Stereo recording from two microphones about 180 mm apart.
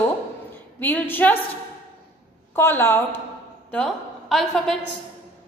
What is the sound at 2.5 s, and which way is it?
Speech, 10° left (ahead or behind).